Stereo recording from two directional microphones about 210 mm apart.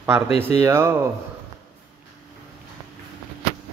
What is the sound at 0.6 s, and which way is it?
Speech, 10° right (ahead or behind).